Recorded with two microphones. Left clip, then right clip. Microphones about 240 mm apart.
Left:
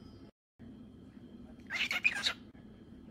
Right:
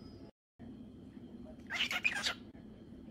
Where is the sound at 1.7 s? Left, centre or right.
Centre.